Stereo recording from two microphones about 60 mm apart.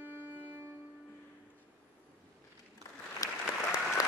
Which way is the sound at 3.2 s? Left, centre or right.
Left.